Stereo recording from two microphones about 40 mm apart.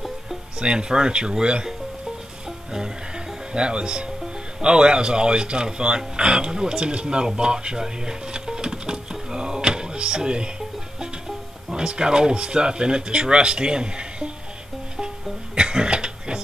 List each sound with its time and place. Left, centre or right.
0.6 s speech: right
2.7 s speech: centre
7.3 s music: right
11.7 s speech: right
15.5 s a sound: right